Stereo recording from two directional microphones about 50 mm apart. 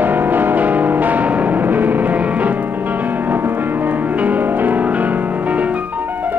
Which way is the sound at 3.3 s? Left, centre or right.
Right.